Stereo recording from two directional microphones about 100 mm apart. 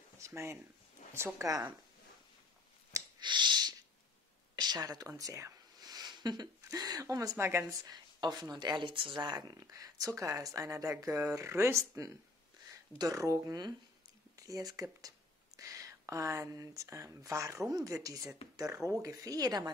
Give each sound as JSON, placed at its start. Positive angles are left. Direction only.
{"t": 0.2, "sound": "speech", "side_deg": -25}
{"t": 3.2, "sound": "a sound", "side_deg": -50}
{"t": 5.0, "sound": "speech", "side_deg": -35}
{"t": 7.8, "sound": "speech", "side_deg": -45}